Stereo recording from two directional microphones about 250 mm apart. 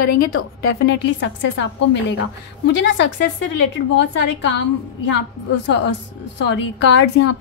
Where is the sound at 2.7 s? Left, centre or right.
Left.